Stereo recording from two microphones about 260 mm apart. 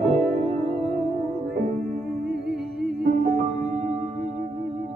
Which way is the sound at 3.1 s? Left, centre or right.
Right.